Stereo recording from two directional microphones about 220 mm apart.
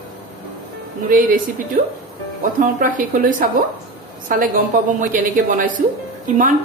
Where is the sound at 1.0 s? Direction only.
40° right (ahead or behind).